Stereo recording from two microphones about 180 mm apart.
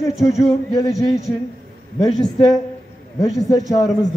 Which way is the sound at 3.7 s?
20° left (ahead or behind).